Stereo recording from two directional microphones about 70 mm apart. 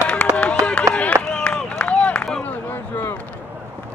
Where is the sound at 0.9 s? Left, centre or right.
Centre.